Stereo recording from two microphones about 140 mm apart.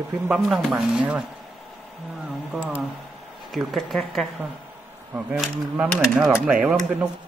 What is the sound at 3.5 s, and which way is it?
Speech, centre (ahead or behind).